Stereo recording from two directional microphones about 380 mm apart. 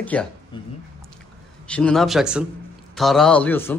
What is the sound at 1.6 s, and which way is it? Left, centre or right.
Speech, centre.